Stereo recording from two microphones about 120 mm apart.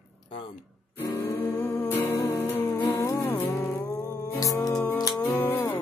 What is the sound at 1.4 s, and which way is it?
Music, 15° left (ahead or behind).